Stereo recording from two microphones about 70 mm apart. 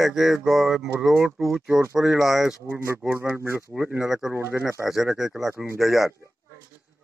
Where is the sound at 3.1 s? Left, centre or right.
Right.